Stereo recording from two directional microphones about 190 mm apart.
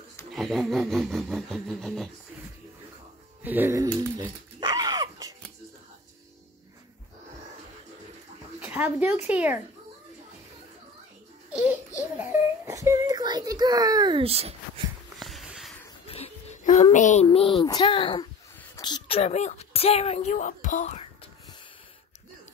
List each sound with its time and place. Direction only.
0.3 s a sound: centre (ahead or behind)
3.4 s a sound: 10° right (ahead or behind)
8.5 s speech: 5° right (ahead or behind)
12.2 s a child's voice: 15° right (ahead or behind); by 14.5 s 30° right (ahead or behind)
15.1 s wheeze: centre (ahead or behind)
16.1 s a child's voice: 35° left (ahead or behind)